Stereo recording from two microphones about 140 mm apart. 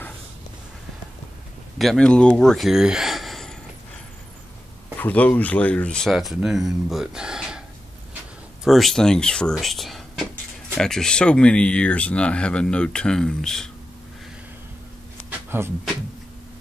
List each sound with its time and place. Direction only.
1.8 s speech: 5° left (ahead or behind)
4.9 s speech: 10° left (ahead or behind); by 7.6 s 5° right (ahead or behind)
8.6 s speech: centre (ahead or behind)
15.2 s a sound: 15° right (ahead or behind)